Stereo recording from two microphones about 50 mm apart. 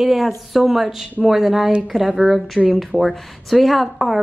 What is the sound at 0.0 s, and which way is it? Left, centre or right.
A woman's voice, centre.